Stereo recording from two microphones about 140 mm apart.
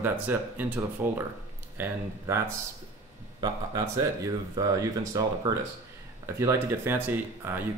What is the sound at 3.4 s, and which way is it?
Speech, 25° right (ahead or behind).